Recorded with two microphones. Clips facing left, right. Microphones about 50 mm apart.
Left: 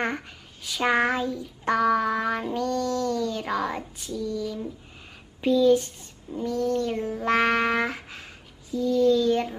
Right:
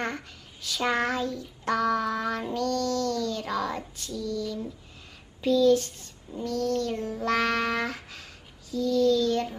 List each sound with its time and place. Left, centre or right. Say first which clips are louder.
0.7 s child singing: left 4 dB; centre